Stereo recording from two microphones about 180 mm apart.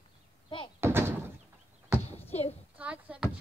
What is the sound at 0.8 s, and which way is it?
Door, 15° right (ahead or behind).